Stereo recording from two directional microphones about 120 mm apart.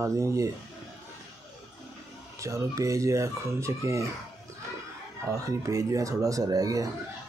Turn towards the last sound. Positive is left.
turn(degrees=-30)  # may be behind; listen again after turning